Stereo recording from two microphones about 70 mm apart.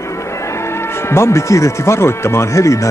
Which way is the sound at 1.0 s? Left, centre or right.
Left.